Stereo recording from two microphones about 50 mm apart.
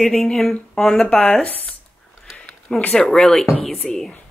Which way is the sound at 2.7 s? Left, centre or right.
Centre.